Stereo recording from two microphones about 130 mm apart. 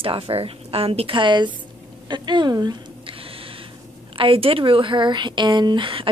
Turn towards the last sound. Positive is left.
turn(degrees=-40)  # may be behind; listen again after turning